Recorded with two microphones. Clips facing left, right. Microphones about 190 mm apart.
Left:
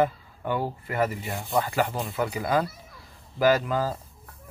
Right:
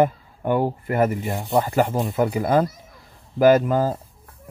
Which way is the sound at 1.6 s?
45° right (ahead or behind).